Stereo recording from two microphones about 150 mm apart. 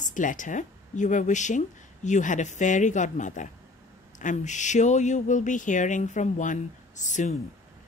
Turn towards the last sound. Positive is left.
turn(degrees=55)  # may be behind; listen again after turning